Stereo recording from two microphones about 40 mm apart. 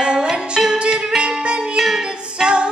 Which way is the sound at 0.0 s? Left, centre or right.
Right.